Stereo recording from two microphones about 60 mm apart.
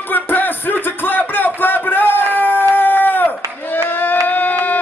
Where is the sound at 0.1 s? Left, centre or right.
Left.